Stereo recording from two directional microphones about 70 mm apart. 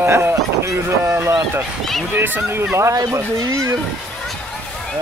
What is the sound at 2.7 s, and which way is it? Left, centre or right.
Speech, right.